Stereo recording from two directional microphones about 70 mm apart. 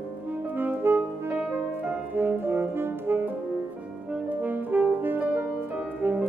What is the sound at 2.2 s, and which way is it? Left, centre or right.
Brass instrument, right.